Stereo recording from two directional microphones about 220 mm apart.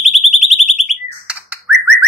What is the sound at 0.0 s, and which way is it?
Alarm, centre (ahead or behind).